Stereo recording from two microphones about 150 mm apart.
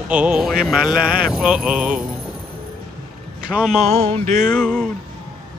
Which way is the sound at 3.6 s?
5° left (ahead or behind).